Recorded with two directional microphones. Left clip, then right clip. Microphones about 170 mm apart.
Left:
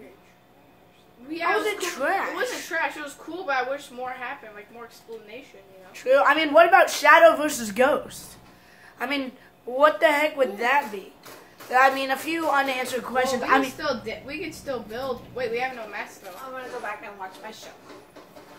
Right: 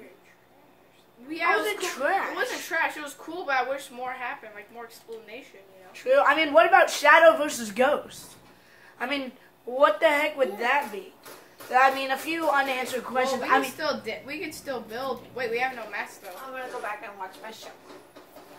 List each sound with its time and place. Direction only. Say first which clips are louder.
1.4 s a sound: even; 25° left (ahead or behind)
2.3 s a woman's voice: even; 20° right (ahead or behind)
5.9 s a woman's voice: left 2 dB; 30° left (ahead or behind)
13.7 s a woman's voice: left 1 dB; 20° right (ahead or behind)